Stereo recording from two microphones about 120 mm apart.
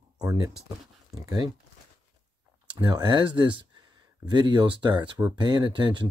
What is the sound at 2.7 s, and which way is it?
Speech, 40° right (ahead or behind).